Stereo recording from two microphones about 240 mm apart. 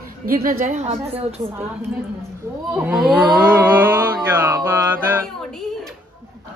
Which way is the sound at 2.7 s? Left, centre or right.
Centre.